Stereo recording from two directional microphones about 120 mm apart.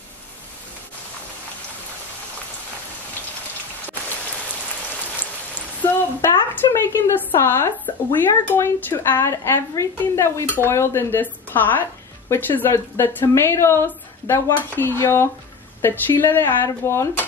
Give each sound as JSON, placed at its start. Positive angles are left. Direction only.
{"t": 5.8, "sound": "a woman's voice", "side_deg": 25}